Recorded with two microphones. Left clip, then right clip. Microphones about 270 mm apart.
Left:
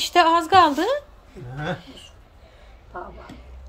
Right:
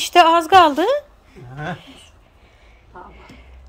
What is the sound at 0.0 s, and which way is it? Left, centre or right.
Speech, centre.